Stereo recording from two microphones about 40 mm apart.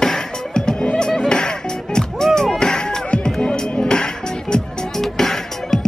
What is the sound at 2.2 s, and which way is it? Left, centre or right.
Music, centre.